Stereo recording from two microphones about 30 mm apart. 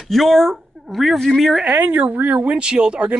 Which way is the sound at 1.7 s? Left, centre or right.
Right.